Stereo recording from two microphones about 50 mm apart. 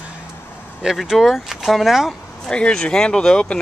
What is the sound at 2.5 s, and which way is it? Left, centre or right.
Speech, centre.